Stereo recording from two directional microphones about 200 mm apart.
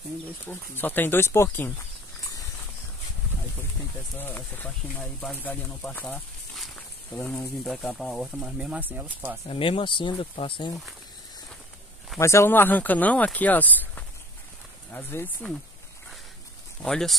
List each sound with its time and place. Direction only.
0.5 s speech: 10° left (ahead or behind)
4.2 s speech: 10° left (ahead or behind); by 9.4 s 10° right (ahead or behind)
9.5 s speech: 25° left (ahead or behind)
12.2 s speech: 15° left (ahead or behind)
16.8 s speech: 5° left (ahead or behind)